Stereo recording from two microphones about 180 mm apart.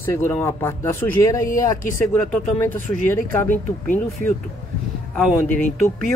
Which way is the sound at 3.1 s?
15° left (ahead or behind).